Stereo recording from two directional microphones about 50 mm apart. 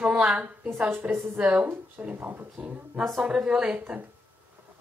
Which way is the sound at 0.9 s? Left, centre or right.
Right.